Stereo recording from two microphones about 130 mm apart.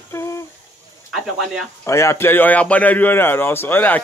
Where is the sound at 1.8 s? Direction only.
20° left (ahead or behind).